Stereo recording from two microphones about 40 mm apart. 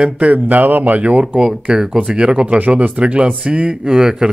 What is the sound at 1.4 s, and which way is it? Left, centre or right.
Speech, right.